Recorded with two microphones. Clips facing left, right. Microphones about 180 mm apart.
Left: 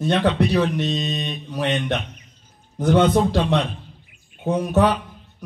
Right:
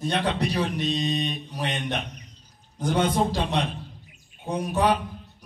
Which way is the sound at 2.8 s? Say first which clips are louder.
Left 6 dB; 55° left (ahead or behind).